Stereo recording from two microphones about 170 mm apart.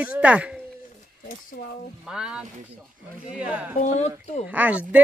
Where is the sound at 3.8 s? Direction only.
40° left (ahead or behind).